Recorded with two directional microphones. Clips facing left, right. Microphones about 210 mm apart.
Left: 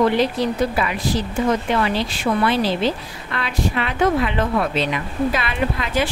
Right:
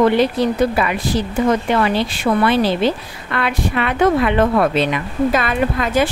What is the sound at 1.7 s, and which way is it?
A woman's voice, 60° right (ahead or behind).